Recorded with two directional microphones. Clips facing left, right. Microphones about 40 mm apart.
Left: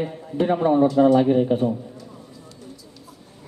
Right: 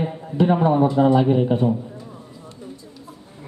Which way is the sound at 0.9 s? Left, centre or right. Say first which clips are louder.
Left 1 dB; right.